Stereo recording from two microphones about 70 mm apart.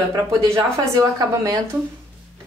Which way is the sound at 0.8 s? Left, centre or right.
Right.